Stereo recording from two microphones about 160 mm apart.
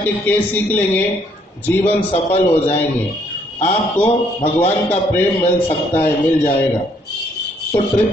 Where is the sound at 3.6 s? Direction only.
35° left (ahead or behind).